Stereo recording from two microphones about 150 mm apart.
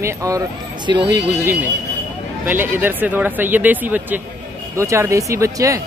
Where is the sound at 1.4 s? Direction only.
15° right (ahead or behind).